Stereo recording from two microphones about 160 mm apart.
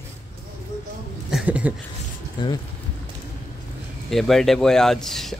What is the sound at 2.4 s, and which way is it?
Speech, 30° left (ahead or behind).